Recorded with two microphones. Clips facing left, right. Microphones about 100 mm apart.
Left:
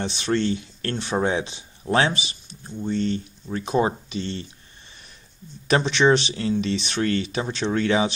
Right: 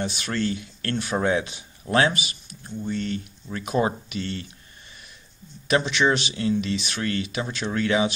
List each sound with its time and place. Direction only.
0.0 s speech: 25° left (ahead or behind)
5.7 s speech: 35° left (ahead or behind)